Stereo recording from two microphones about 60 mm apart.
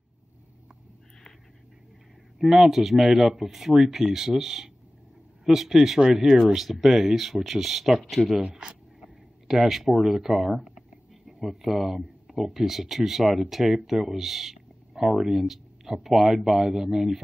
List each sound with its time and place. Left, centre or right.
2.3 s speech: centre
8.4 s speech: centre
9.0 s speech: centre